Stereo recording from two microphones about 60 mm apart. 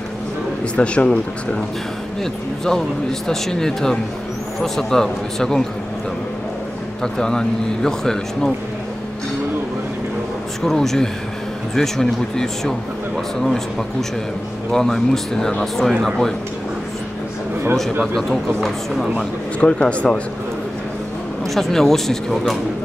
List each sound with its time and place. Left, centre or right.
0.7 s a man's voice: centre
2.6 s a man's voice: centre
7.0 s a man's voice: centre
10.6 s a man's voice: centre
18.0 s a man's voice: centre
19.6 s speech: centre
21.5 s a man's voice: centre